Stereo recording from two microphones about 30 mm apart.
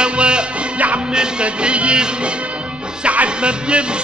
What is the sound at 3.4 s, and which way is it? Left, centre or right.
Music, right.